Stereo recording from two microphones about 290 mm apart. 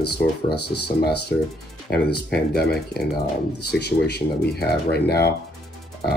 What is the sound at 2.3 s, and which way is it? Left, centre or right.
Speech, left.